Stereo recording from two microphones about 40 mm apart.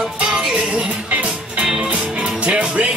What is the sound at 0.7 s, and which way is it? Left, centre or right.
Music, right.